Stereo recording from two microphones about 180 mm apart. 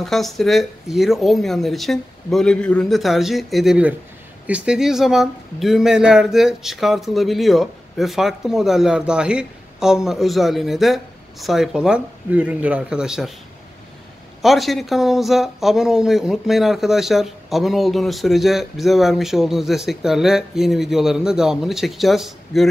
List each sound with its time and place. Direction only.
0.0 s speech: centre (ahead or behind)
14.4 s speech: centre (ahead or behind)